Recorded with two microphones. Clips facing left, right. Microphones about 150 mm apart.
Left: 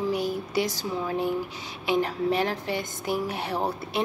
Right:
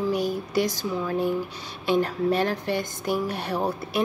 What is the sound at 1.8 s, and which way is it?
A woman's voice, 15° left (ahead or behind).